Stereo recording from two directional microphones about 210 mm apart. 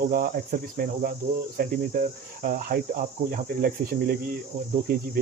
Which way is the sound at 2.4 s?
40° right (ahead or behind).